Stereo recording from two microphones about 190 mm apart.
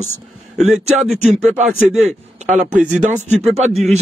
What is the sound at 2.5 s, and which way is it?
Speech, 10° right (ahead or behind).